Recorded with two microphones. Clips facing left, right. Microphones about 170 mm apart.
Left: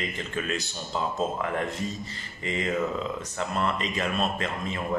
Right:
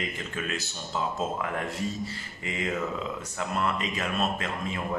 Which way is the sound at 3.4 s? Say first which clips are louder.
Left 1 dB; 5° right (ahead or behind).